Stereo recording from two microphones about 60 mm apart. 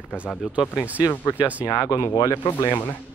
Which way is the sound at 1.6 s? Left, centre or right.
Left.